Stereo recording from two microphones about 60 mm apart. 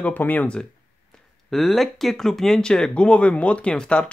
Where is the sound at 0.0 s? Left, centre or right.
Left.